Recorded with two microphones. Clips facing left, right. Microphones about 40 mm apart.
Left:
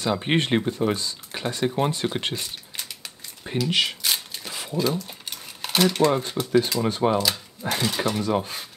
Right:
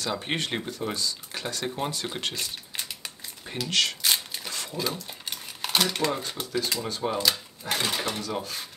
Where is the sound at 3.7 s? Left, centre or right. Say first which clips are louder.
Left 1 dB; centre.